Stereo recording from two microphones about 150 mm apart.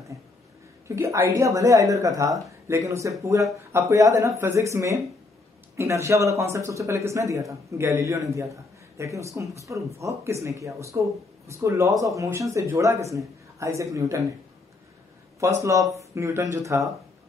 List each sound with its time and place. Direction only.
0.8 s a man's voice: 20° right (ahead or behind)
15.6 s a man's voice: 20° right (ahead or behind)